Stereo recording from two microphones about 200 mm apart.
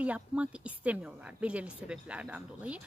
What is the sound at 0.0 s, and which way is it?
Speech, 5° right (ahead or behind).